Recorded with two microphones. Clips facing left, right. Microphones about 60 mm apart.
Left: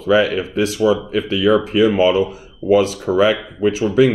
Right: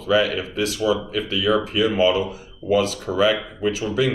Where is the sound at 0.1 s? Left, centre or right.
Left.